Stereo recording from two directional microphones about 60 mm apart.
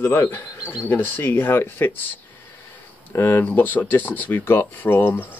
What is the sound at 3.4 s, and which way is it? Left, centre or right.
A man's voice, left.